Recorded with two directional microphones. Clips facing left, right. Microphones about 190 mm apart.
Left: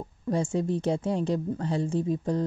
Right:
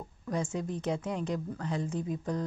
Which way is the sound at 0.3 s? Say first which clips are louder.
Left 7 dB; 30° left (ahead or behind).